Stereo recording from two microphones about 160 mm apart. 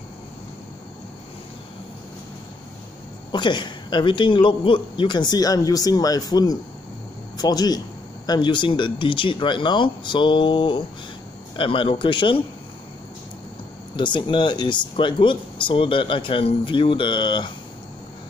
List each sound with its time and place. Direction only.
3.3 s a woman's voice: 30° left (ahead or behind)
13.9 s speech: 30° left (ahead or behind)